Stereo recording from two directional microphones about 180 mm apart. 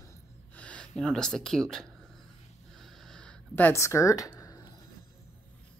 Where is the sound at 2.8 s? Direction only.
Centre (ahead or behind); by 4.6 s 20° left (ahead or behind).